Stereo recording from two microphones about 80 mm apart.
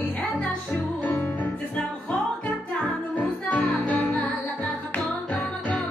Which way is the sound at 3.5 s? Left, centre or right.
Centre.